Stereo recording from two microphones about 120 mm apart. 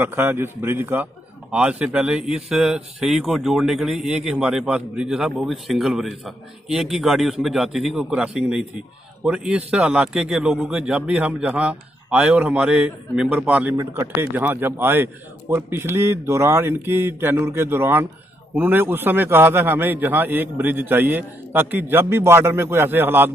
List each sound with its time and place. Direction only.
0.0 s a man's voice: 15° right (ahead or behind)